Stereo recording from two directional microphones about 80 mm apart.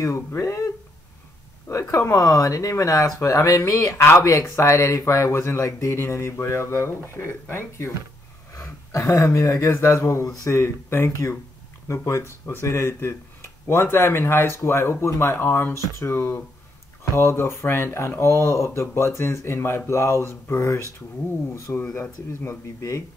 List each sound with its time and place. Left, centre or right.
0.0 s speech: left
1.7 s speech: left
8.5 s speech: left